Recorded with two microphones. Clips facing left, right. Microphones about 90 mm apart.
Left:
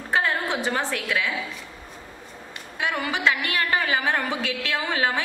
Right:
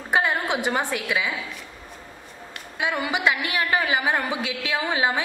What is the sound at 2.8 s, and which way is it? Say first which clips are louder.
A woman's voice: right 1 dB; 15° right (ahead or behind).